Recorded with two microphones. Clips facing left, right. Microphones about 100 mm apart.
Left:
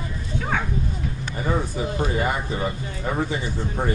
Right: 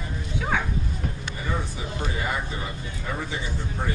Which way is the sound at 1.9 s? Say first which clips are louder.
Left 4 dB; 40° left (ahead or behind).